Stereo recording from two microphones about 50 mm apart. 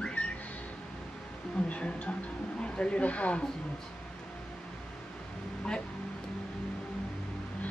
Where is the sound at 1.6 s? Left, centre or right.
Left.